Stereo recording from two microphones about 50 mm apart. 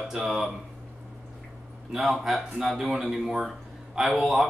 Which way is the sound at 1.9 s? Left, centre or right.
Centre.